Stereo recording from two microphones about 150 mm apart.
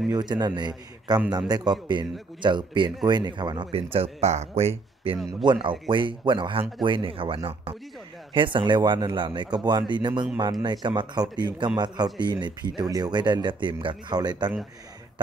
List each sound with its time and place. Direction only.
0.1 s a man's voice: 25° right (ahead or behind)